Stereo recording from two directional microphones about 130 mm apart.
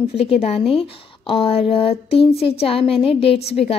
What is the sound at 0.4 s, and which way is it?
A woman's voice, 50° left (ahead or behind).